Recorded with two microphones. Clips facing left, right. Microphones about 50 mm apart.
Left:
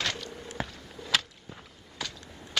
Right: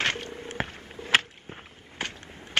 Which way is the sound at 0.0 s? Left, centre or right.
Right.